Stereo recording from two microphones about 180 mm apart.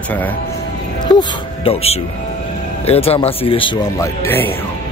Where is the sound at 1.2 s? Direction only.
35° left (ahead or behind).